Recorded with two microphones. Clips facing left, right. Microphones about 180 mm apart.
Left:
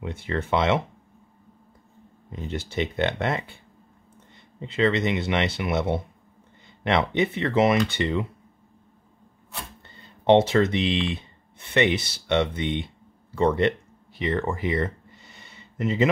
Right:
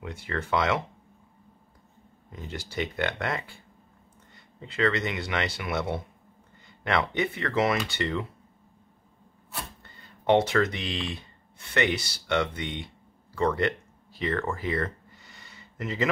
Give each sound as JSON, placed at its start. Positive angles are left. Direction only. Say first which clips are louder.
{"t": 0.0, "sound": "speech", "louder": "left 4 dB", "side_deg": 25}
{"t": 2.3, "sound": "speech", "louder": "left 5 dB", "side_deg": 25}
{"t": 4.6, "sound": "speech", "louder": "left 4 dB", "side_deg": 20}
{"t": 10.0, "sound": "speech", "louder": "left 4 dB", "side_deg": 25}